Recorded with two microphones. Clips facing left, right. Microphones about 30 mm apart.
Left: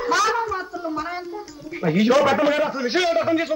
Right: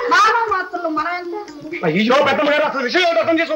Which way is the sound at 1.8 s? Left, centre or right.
Right.